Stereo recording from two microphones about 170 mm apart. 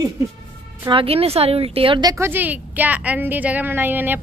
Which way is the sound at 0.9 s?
35° right (ahead or behind).